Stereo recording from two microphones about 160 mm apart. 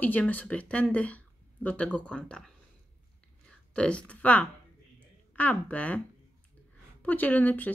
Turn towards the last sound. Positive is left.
turn(degrees=10)  # may be behind; listen again after turning